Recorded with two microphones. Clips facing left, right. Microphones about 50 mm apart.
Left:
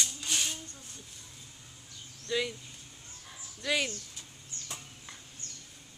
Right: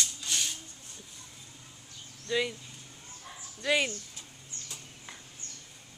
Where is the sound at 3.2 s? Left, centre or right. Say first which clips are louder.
Right 4 dB; centre.